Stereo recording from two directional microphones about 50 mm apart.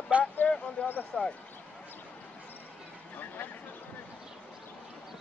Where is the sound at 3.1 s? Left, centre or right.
Left.